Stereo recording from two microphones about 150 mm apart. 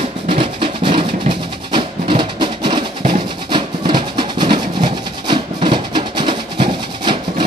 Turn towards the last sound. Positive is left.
turn(degrees=-35)  # may be behind; listen again after turning